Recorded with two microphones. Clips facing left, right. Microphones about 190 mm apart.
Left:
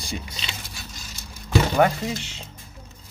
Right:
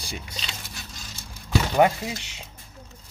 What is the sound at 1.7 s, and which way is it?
Speech, 15° right (ahead or behind).